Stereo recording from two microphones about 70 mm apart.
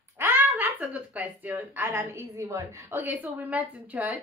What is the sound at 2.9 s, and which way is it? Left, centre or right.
Speech, right.